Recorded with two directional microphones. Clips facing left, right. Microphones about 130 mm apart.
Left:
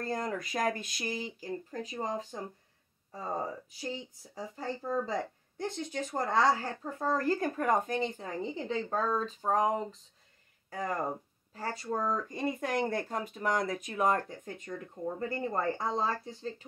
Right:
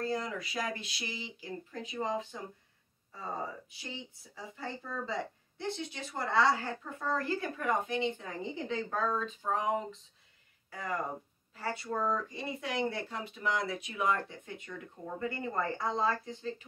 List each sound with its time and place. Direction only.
0.0 s speech: 50° left (ahead or behind)
3.7 s a woman's voice: 40° left (ahead or behind)